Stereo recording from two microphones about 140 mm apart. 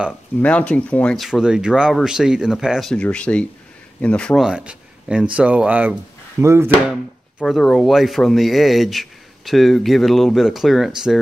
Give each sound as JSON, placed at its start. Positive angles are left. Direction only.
{"t": 0.4, "sound": "speech", "side_deg": 10}
{"t": 4.5, "sound": "speech", "side_deg": -5}
{"t": 7.4, "sound": "speech", "side_deg": 0}